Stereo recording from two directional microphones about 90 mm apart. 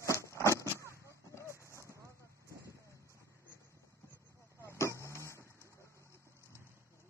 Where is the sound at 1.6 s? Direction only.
35° right (ahead or behind).